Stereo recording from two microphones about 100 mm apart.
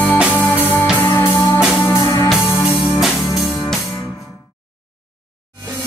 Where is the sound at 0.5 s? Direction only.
20° left (ahead or behind).